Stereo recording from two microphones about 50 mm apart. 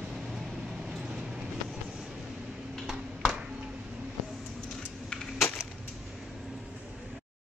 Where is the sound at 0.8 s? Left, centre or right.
Centre.